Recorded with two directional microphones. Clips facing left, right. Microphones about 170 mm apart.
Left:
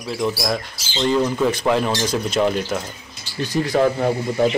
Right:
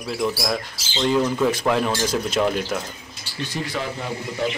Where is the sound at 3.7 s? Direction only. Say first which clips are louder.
Left 11 dB; 50° left (ahead or behind).